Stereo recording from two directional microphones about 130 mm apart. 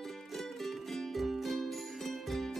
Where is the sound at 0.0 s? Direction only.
Centre (ahead or behind).